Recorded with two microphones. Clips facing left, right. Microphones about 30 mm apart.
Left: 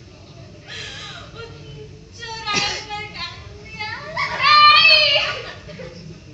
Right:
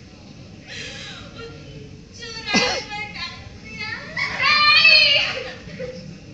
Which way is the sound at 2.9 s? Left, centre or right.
Centre.